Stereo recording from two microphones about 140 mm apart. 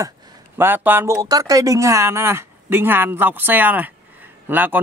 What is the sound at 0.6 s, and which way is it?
A man's voice, 15° right (ahead or behind).